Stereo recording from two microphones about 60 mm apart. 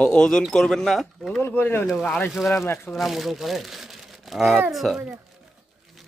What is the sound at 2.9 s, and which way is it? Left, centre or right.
Speech, centre.